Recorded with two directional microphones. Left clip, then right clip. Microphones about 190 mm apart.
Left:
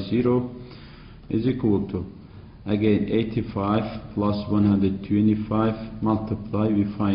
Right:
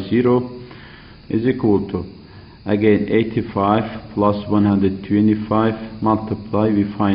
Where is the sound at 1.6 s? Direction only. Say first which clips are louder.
Right 6 dB; 30° right (ahead or behind).